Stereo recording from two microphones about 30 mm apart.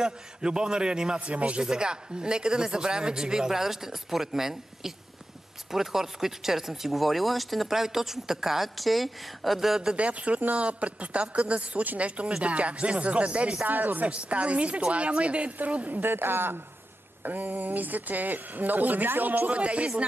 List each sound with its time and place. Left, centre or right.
0.0 s speech: right
1.2 s speech: right
1.6 s a woman's voice: right
7.0 s speech: centre
7.6 s a woman's voice: centre
9.9 s speech: right
13.7 s speech: right
14.0 s speech: right
17.2 s speech: right
19.5 s speech: right